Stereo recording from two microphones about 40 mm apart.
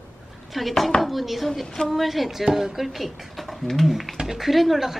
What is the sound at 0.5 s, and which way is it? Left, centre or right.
Speech, centre.